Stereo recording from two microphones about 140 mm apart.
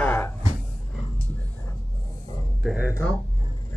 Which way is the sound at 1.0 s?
40° left (ahead or behind).